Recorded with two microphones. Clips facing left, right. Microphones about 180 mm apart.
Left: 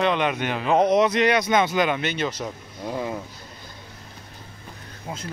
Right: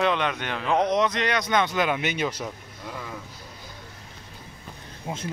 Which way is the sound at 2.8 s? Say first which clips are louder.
Left 9 dB; 35° left (ahead or behind).